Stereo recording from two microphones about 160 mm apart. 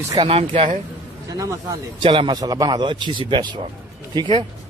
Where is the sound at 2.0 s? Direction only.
30° right (ahead or behind).